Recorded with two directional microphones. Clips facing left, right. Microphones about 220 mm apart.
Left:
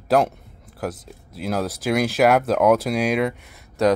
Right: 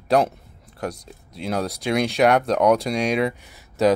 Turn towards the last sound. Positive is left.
turn(degrees=0)  # may be behind; listen again after turning